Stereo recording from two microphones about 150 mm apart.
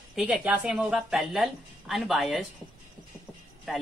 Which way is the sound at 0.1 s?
5° right (ahead or behind).